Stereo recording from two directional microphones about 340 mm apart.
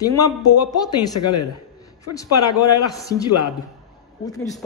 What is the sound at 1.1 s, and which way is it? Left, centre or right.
Speech, left.